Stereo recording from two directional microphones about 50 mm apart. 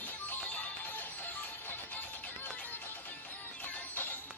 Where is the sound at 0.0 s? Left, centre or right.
Left.